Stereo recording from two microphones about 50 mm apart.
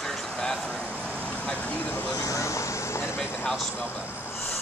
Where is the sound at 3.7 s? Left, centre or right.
Left.